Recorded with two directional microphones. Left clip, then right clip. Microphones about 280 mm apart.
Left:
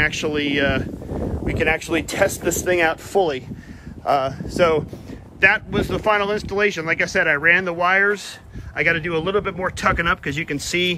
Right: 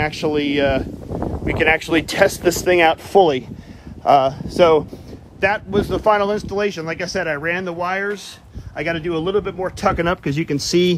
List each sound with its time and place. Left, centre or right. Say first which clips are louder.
0.0 s speech: right 1 dB; centre